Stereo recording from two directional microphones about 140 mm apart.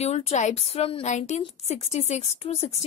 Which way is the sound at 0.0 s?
50° left (ahead or behind).